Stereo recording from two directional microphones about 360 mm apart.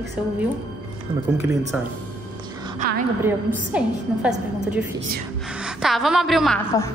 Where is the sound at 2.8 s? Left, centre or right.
Right.